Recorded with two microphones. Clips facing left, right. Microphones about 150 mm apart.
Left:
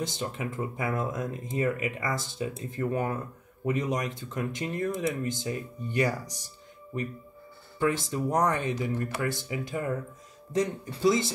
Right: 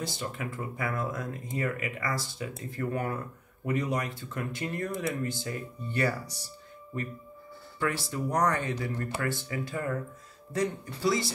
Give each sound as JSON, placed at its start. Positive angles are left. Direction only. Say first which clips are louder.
{"t": 0.0, "sound": "speech", "louder": "left 3 dB", "side_deg": 20}
{"t": 8.1, "sound": "speech", "louder": "left 1 dB", "side_deg": 20}